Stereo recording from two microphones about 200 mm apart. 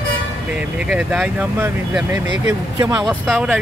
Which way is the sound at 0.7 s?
5° right (ahead or behind).